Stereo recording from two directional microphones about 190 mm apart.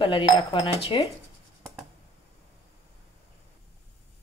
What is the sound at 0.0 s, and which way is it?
A woman's voice, 25° left (ahead or behind).